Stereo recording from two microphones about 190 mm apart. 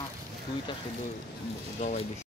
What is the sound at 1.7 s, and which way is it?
Speech, 35° left (ahead or behind).